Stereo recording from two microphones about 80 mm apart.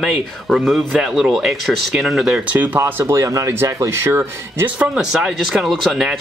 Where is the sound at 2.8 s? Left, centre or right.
Right.